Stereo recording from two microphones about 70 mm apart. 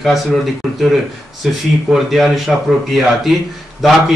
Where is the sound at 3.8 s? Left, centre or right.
Centre.